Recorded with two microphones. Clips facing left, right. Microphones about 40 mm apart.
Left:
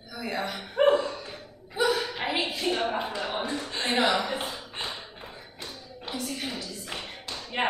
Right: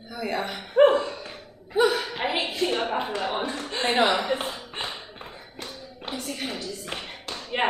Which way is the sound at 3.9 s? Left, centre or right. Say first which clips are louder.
Right 3 dB; right.